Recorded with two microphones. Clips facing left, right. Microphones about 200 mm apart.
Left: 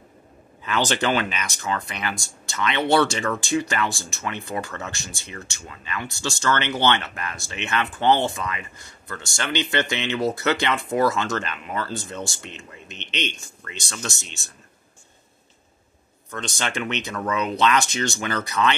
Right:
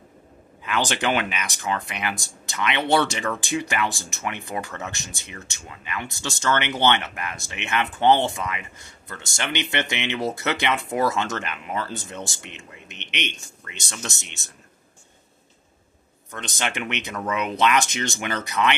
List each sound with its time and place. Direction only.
0.7 s speech: 15° right (ahead or behind)
16.3 s speech: 15° right (ahead or behind)